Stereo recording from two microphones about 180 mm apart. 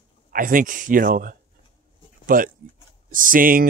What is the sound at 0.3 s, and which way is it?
Speech, 50° right (ahead or behind).